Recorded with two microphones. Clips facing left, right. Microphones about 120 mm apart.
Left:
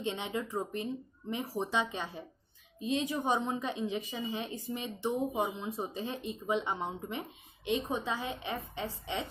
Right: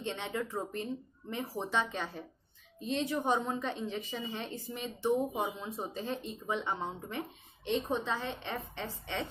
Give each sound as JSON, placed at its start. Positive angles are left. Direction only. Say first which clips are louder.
{"t": 0.0, "sound": "a woman's voice", "louder": "left 1 dB", "side_deg": 15}